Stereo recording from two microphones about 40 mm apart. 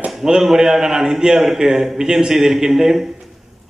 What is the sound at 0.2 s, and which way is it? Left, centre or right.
A man's voice, centre.